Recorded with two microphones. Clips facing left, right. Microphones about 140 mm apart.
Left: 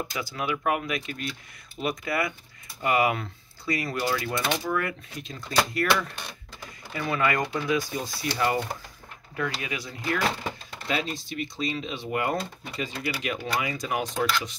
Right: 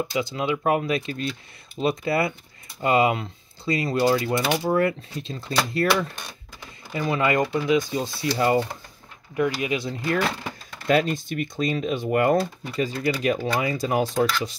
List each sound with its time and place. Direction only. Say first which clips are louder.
0.1 s speech: right 5 dB; 20° right (ahead or behind)
10.9 s speech: right 9 dB; 50° right (ahead or behind); by 14.2 s 35° right (ahead or behind)